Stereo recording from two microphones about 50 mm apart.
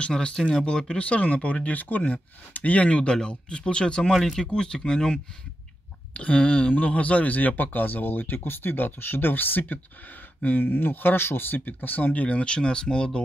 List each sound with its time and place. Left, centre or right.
0.0 s speech: centre
4.1 s speech: centre
4.4 s speech: centre; by 12.1 s left
12.1 s speech: left